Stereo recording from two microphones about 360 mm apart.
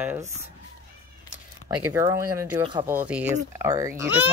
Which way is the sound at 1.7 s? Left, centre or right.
Centre.